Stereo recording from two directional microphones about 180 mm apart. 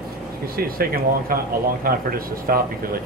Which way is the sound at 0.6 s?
55° right (ahead or behind).